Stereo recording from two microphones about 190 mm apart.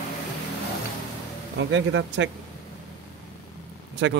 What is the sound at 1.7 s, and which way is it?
Speech, 70° right (ahead or behind).